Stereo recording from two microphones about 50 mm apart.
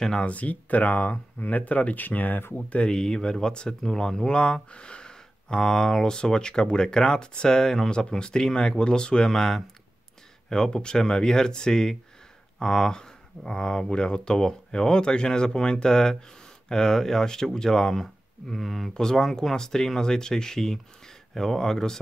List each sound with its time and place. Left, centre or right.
0.0 s speech: centre
0.3 s speech: left
2.5 s speech: left